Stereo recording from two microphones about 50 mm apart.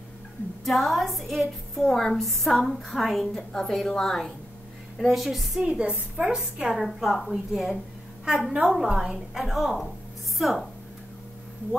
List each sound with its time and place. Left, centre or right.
0.7 s a woman's voice: centre
4.9 s a woman's voice: centre
5.6 s a woman's voice: right
7.0 s a woman's voice: centre
8.3 s a woman's voice: centre